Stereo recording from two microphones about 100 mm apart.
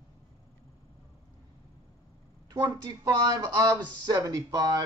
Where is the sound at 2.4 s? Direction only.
40° right (ahead or behind).